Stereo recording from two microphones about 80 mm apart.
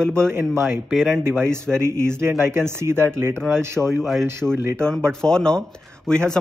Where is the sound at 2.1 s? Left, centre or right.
Right.